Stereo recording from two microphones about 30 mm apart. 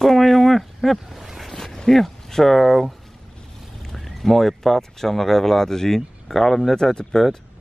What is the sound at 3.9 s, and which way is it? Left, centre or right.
Speech, centre.